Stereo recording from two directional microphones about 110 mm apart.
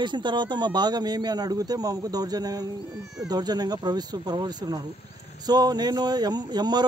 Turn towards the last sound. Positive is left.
turn(degrees=-40)  # may be behind; listen again after turning